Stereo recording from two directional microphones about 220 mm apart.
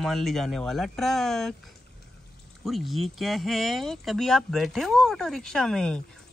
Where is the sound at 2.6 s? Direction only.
Centre (ahead or behind).